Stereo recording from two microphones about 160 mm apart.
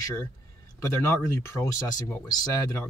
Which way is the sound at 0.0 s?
15° left (ahead or behind).